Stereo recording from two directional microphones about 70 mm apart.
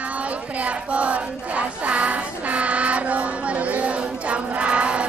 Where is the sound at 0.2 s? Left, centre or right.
Centre.